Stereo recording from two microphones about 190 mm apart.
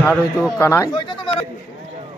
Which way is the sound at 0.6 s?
15° left (ahead or behind).